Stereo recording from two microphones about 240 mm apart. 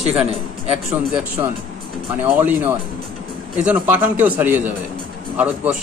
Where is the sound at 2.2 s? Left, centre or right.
Centre.